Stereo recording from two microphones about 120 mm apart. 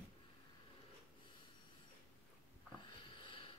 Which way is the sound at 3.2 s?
45° left (ahead or behind).